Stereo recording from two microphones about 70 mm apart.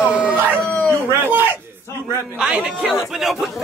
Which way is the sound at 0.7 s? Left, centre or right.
Centre.